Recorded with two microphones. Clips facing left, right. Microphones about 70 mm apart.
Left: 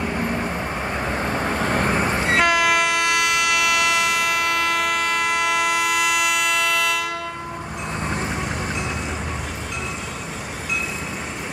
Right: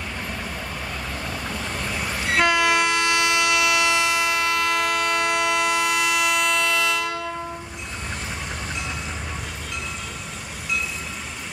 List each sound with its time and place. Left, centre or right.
0.0 s vehicle: left
2.3 s train: centre